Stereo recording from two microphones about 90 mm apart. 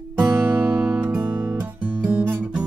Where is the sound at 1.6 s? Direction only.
15° right (ahead or behind).